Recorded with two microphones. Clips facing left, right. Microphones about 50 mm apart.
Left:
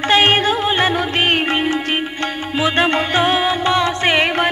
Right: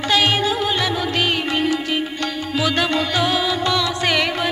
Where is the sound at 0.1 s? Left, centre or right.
Left.